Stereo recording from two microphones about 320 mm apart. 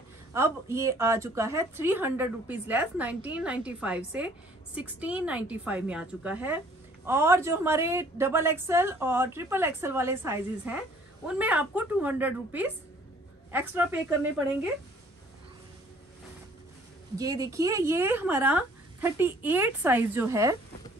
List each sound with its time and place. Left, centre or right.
0.3 s a woman's voice: centre
17.2 s a woman's voice: centre